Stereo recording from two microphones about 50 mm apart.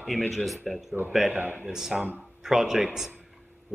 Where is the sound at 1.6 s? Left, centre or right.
Centre.